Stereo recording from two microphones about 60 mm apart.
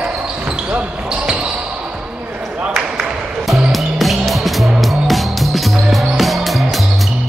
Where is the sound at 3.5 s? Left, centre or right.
Centre.